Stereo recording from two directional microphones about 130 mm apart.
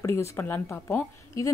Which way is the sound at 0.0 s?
20° left (ahead or behind).